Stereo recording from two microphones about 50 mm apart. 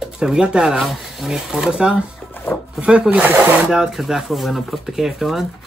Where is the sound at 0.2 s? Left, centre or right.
Centre.